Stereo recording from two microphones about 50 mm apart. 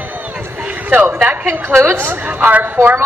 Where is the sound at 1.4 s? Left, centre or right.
Right.